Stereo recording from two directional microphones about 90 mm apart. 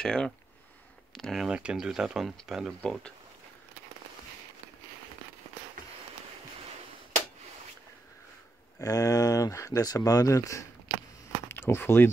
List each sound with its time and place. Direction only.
0.0 s speech: 5° left (ahead or behind)
1.5 s speech: 10° right (ahead or behind)
2.8 s speech: 15° left (ahead or behind)
8.7 s speech: 40° left (ahead or behind)
11.4 s speech: 25° left (ahead or behind)